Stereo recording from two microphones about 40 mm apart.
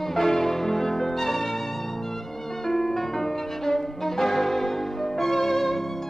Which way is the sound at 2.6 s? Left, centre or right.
Centre.